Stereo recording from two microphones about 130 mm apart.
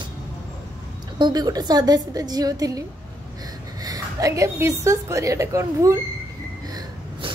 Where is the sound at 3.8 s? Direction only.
25° right (ahead or behind).